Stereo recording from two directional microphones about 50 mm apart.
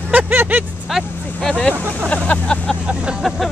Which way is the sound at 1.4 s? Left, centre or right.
Centre.